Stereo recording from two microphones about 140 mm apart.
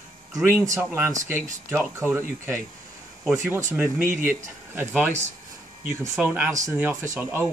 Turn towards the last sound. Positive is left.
turn(degrees=-20)  # may be behind; listen again after turning